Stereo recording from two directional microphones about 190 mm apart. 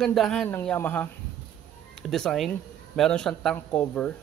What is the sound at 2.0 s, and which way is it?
Speech, centre (ahead or behind).